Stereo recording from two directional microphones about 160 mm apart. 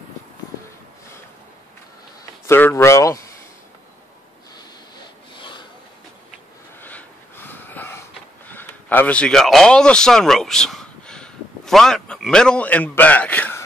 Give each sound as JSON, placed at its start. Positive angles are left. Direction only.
{"t": 2.4, "sound": "speech", "side_deg": 15}
{"t": 5.3, "sound": "rub", "side_deg": 30}
{"t": 6.8, "sound": "a sound", "side_deg": 10}
{"t": 8.5, "sound": "speech", "side_deg": 10}